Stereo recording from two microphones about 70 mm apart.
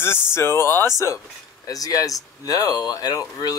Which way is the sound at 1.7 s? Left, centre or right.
Left.